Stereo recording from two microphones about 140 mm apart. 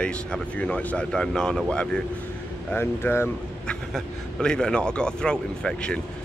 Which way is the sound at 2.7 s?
15° left (ahead or behind).